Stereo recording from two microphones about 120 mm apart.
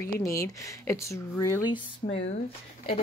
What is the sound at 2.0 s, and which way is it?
Speech, 50° left (ahead or behind).